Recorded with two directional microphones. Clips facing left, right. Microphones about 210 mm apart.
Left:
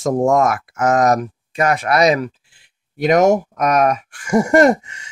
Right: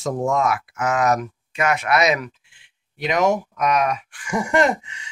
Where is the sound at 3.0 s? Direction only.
45° left (ahead or behind).